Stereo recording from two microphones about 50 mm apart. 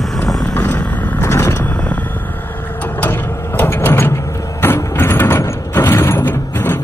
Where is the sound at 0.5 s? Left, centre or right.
Left.